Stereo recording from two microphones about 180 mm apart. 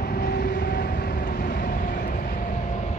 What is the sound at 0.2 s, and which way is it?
Vehicle, 60° left (ahead or behind).